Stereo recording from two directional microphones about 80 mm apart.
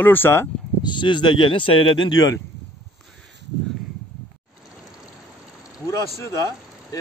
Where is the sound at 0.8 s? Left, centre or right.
Left.